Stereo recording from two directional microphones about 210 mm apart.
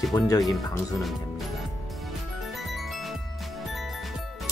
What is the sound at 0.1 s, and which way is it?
Speech, 10° left (ahead or behind).